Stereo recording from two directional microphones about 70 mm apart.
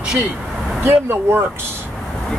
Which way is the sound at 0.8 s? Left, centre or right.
Right.